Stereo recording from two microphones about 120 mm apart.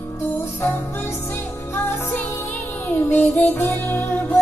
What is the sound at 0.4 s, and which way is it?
Music, 15° left (ahead or behind).